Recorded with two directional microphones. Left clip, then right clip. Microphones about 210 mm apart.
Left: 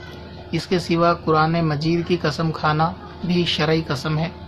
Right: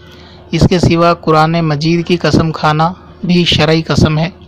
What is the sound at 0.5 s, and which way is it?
Speech, 40° right (ahead or behind).